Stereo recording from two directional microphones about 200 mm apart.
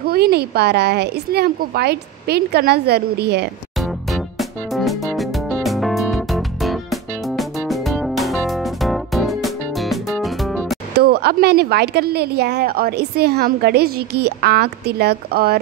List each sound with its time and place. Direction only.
0.0 s speech: 50° right (ahead or behind)
3.8 s music: centre (ahead or behind)
11.0 s speech: 50° right (ahead or behind)